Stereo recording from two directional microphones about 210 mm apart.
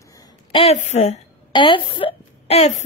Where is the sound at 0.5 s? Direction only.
30° left (ahead or behind).